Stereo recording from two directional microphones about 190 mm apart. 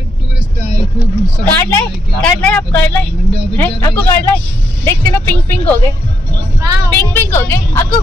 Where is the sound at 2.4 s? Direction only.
5° left (ahead or behind).